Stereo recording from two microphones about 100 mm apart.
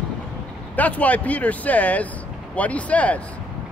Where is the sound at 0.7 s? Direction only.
15° left (ahead or behind).